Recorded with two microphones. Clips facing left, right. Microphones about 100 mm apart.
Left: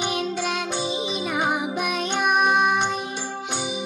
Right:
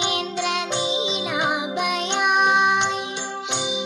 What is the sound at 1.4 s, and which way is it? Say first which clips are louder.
Music: right 1 dB; 65° right (ahead or behind).